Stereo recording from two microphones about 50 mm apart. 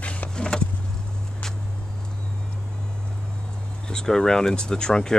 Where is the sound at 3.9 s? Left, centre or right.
Centre.